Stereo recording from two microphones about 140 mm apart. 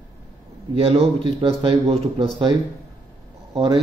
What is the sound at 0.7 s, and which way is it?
Speech, 45° right (ahead or behind).